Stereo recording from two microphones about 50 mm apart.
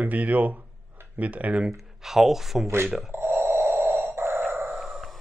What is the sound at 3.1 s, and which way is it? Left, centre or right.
Doorbell, right.